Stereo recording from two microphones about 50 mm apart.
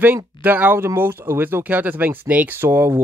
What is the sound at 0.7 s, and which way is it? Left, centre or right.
Speech, right.